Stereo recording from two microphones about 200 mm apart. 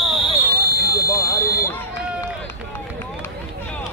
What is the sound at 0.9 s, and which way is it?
Run, 15° left (ahead or behind).